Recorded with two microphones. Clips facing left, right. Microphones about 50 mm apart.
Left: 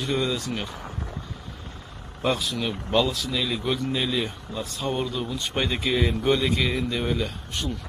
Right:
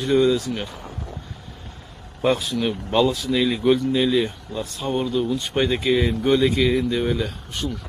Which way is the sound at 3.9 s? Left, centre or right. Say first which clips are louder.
Right 7 dB; centre.